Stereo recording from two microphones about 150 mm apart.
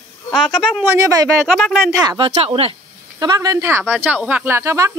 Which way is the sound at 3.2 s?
25° right (ahead or behind).